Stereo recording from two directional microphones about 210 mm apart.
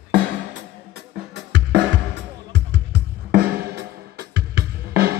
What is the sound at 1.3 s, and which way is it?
Music, 55° right (ahead or behind).